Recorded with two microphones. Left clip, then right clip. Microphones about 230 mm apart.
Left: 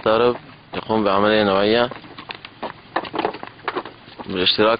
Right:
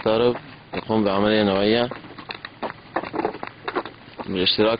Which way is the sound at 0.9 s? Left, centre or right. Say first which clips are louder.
Left 3 dB; centre.